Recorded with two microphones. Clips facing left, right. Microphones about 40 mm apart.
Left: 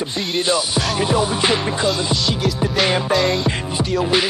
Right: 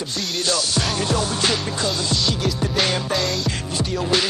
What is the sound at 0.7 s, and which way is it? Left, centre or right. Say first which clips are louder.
Music: left 4 dB; centre.